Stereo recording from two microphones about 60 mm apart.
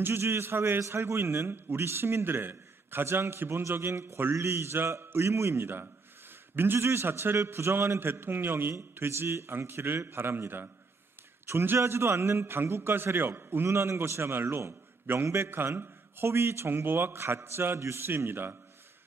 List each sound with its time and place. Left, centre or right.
0.0 s a man's voice: right